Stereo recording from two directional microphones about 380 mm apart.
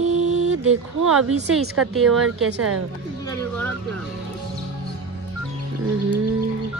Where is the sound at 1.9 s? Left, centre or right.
Centre.